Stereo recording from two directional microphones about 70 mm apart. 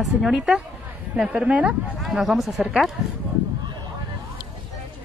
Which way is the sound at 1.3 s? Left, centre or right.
Centre.